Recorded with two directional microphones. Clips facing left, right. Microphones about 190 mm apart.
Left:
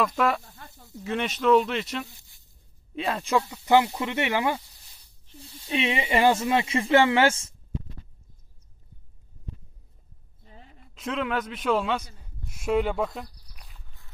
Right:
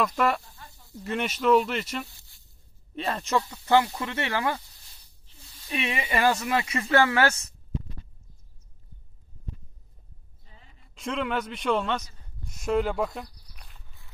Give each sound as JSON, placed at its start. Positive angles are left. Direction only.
{"t": 1.0, "sound": "speech", "side_deg": 0}
{"t": 2.0, "sound": "a sound", "side_deg": 20}
{"t": 3.0, "sound": "speech", "side_deg": 0}
{"t": 3.3, "sound": "speech", "side_deg": 15}
{"t": 5.7, "sound": "speech", "side_deg": 25}
{"t": 10.5, "sound": "a sound", "side_deg": 50}
{"t": 11.0, "sound": "speech", "side_deg": 0}
{"t": 12.4, "sound": "walk", "side_deg": 5}